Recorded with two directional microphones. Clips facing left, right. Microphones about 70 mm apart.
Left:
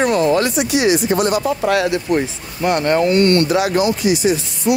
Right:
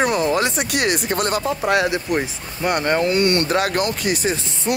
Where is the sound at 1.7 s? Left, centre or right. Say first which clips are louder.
Left 1 dB; right.